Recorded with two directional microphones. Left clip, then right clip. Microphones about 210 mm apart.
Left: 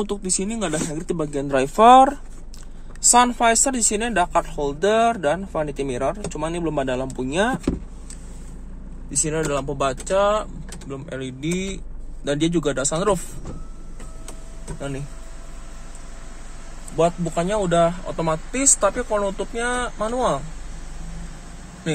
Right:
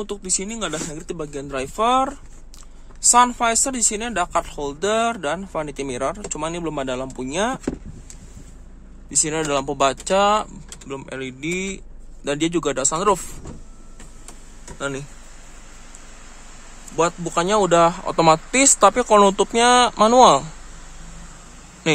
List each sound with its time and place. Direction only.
0.0 s speech: 5° right (ahead or behind); by 2.0 s 10° left (ahead or behind)
3.1 s speech: centre (ahead or behind)
9.1 s speech: 20° right (ahead or behind)
17.3 s speech: 40° right (ahead or behind)
19.0 s speech: 50° right (ahead or behind)